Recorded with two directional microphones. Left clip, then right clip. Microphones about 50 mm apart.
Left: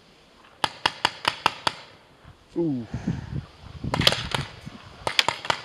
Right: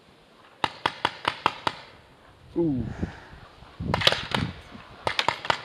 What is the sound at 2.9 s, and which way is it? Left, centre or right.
Speech, right.